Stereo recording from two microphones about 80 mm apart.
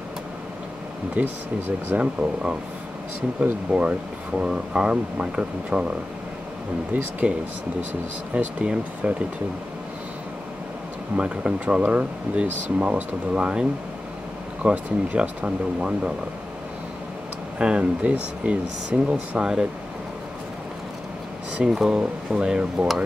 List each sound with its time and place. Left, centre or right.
1.2 s speech: centre
7.2 s speech: centre
11.1 s speech: centre
17.6 s speech: centre
21.5 s speech: centre